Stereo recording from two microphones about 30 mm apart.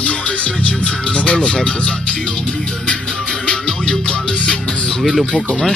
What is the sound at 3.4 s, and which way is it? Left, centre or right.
Music, left.